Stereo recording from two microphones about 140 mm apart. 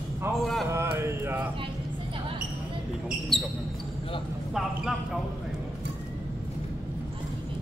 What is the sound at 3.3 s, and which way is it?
Speech, centre (ahead or behind).